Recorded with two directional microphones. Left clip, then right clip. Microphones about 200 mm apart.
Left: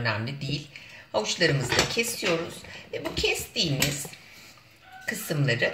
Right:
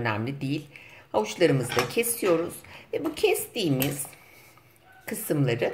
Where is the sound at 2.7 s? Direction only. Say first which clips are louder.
Right 3 dB; 30° right (ahead or behind).